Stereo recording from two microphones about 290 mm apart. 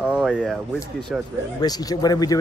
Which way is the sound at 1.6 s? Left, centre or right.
Centre.